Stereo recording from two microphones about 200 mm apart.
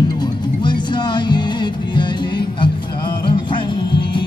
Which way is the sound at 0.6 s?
20° left (ahead or behind).